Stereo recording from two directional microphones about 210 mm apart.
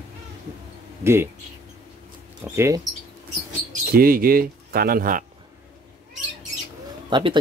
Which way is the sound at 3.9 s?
45° right (ahead or behind).